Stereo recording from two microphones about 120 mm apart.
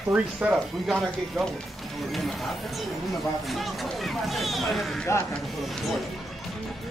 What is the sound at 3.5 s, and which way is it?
Speech, centre (ahead or behind).